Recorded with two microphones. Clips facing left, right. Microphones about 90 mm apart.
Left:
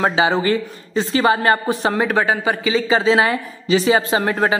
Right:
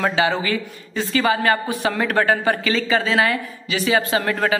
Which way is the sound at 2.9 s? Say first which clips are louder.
Left 4 dB; 25° left (ahead or behind).